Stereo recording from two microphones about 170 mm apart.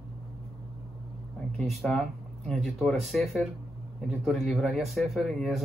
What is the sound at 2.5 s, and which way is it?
Speech, centre (ahead or behind).